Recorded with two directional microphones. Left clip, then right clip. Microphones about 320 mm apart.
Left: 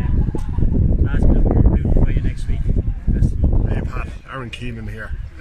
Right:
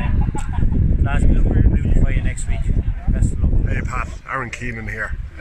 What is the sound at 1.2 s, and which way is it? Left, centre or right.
Speech, left.